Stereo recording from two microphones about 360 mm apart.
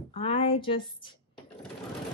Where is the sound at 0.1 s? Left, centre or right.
Centre.